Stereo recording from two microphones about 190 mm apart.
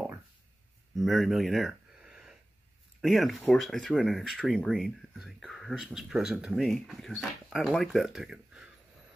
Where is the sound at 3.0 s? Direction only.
Centre (ahead or behind).